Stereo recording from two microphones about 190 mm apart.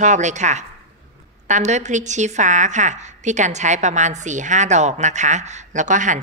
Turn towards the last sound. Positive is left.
turn(degrees=-40)  # may be behind; listen again after turning